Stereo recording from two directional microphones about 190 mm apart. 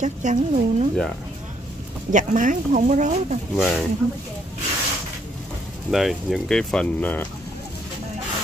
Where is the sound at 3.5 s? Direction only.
Centre (ahead or behind).